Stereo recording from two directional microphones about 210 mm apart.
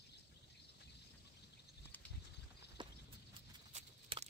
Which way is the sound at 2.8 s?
20° right (ahead or behind).